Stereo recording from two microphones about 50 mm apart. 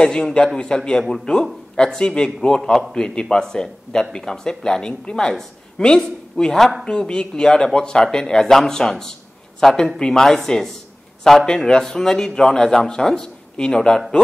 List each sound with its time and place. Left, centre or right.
0.0 s speech: centre